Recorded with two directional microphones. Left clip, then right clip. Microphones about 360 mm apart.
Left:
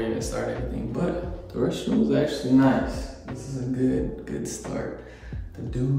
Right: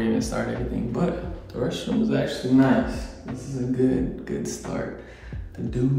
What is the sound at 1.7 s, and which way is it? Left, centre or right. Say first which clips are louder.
Speech: left 1 dB; centre.